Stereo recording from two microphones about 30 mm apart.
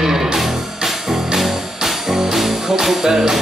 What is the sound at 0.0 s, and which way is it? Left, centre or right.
Music, centre.